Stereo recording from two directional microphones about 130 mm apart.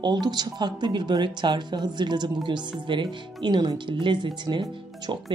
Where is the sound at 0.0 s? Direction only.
35° right (ahead or behind).